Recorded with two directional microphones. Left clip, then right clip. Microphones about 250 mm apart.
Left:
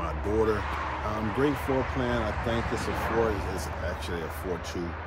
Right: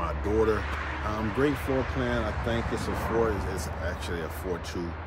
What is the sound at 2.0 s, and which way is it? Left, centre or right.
Speech, centre.